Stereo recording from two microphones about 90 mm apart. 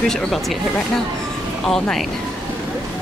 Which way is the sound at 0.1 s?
5° left (ahead or behind).